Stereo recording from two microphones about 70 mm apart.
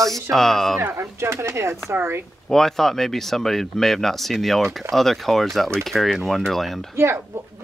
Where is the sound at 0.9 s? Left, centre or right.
Right.